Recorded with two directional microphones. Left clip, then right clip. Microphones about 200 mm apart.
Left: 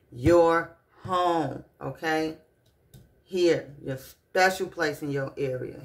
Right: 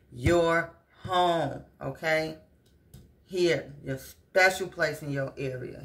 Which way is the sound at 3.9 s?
40° left (ahead or behind).